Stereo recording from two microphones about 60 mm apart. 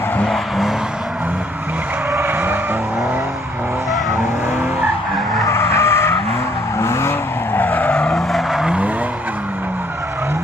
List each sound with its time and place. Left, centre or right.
2.1 s skidding: right
5.5 s skidding: left
6.8 s vehicle: left
7.5 s vehicle: left
7.9 s vehicle: centre
8.3 s vehicle: centre
8.6 s skidding: centre